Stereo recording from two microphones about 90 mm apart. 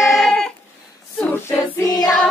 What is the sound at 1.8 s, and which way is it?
Music, 45° left (ahead or behind).